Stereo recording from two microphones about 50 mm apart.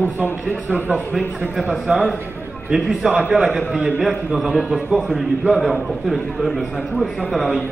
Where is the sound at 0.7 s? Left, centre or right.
Left.